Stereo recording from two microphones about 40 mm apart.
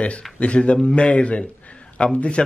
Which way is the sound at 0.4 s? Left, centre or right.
Left.